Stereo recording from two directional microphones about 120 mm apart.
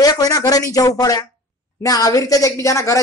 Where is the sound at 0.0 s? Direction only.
30° left (ahead or behind).